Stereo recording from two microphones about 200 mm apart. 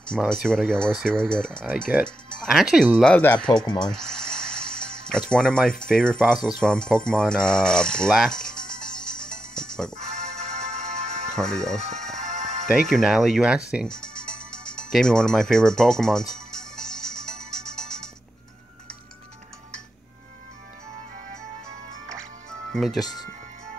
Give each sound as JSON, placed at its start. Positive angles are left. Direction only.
{"t": 0.1, "sound": "speech", "side_deg": 0}
{"t": 3.0, "sound": "speech", "side_deg": 5}
{"t": 9.2, "sound": "music", "side_deg": 5}
{"t": 9.9, "sound": "music", "side_deg": -35}
{"t": 11.3, "sound": "speech", "side_deg": 5}
{"t": 11.8, "sound": "speech", "side_deg": -35}
{"t": 12.2, "sound": "music", "side_deg": -35}
{"t": 12.9, "sound": "music", "side_deg": 0}
{"t": 22.7, "sound": "speech", "side_deg": 0}
{"t": 22.9, "sound": "speech", "side_deg": 20}